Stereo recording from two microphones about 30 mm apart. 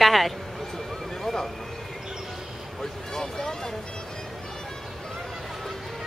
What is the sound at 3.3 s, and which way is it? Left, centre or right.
Vehicle, centre.